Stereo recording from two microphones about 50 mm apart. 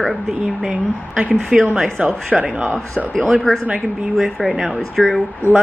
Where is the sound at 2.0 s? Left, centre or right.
Right.